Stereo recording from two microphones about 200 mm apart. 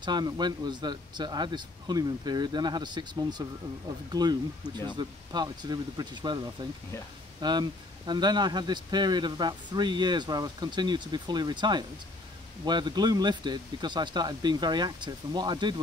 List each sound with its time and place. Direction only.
0.0 s speech: 20° right (ahead or behind)